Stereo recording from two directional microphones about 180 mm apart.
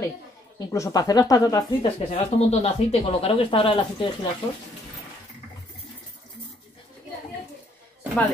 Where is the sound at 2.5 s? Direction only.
35° left (ahead or behind).